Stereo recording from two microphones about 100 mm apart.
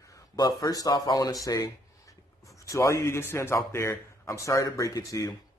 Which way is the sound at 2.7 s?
30° left (ahead or behind).